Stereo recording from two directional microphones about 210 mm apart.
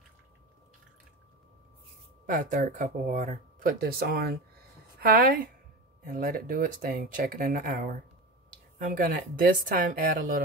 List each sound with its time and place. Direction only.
2.2 s a woman's voice: 40° right (ahead or behind)